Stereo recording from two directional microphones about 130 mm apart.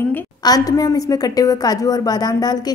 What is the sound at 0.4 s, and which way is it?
A woman's voice, 30° left (ahead or behind).